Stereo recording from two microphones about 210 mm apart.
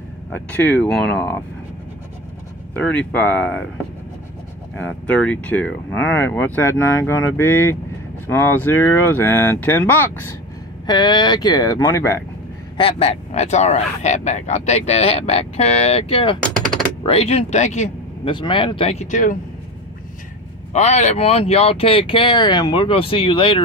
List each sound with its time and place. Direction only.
0.3 s speech: 5° left (ahead or behind)
2.7 s speech: 5° left (ahead or behind)
4.7 s speech: 5° left (ahead or behind)
12.7 s speech: 25° left (ahead or behind)
20.7 s speech: 30° left (ahead or behind)